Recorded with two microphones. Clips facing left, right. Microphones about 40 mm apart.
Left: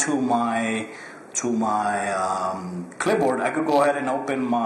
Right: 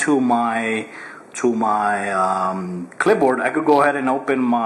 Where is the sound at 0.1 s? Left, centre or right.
Centre.